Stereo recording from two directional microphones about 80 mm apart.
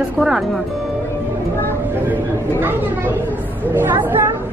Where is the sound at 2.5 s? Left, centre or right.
Right.